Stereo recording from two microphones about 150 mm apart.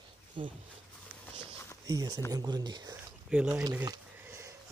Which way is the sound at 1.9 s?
25° right (ahead or behind).